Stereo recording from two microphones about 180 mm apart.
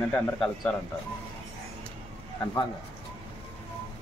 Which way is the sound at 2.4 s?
20° left (ahead or behind).